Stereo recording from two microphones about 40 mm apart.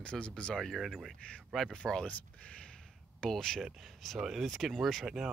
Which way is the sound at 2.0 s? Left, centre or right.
Left.